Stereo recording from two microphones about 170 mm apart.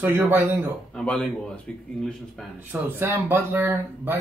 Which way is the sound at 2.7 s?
15° right (ahead or behind).